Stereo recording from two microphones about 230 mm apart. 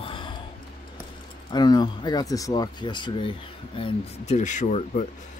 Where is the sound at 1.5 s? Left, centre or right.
Centre.